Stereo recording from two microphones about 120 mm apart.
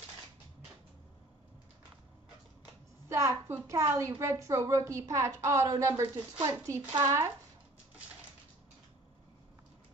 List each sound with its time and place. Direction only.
3.1 s a woman's voice: 25° right (ahead or behind)